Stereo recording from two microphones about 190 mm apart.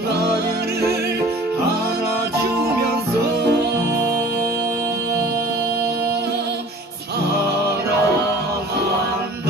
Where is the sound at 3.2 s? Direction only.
60° right (ahead or behind).